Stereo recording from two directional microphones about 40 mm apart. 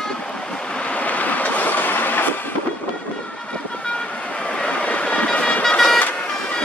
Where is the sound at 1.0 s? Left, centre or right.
Left.